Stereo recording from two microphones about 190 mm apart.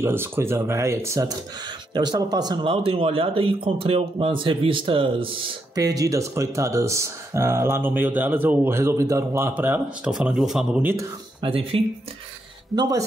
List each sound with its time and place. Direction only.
0.0 s speech: 10° right (ahead or behind)
11.4 s speech: 30° right (ahead or behind)